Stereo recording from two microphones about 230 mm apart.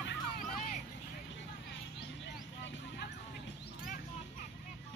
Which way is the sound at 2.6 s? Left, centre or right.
Left.